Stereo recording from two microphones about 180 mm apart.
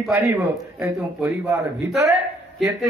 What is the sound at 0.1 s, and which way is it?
A man's voice, 10° right (ahead or behind).